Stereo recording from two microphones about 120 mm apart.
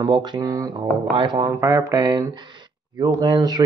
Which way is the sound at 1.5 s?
25° right (ahead or behind).